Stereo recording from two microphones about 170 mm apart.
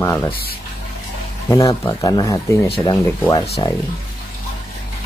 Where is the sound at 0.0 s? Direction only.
15° left (ahead or behind).